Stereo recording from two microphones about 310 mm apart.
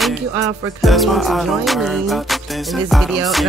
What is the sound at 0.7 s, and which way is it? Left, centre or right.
Music, centre.